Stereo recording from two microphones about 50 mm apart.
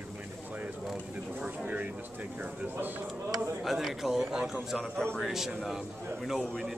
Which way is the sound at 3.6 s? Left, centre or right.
Centre.